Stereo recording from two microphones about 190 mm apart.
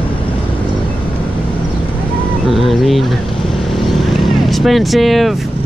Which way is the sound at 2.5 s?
Centre (ahead or behind).